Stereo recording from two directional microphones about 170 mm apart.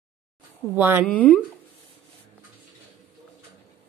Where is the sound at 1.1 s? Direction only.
10° left (ahead or behind).